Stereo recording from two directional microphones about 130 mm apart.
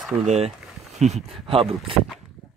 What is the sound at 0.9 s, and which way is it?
Speech, 60° right (ahead or behind).